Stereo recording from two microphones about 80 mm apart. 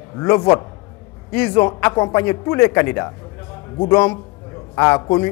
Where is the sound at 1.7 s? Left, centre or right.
Centre.